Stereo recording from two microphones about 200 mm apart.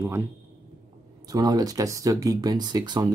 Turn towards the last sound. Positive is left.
turn(degrees=-20)  # may be behind; listen again after turning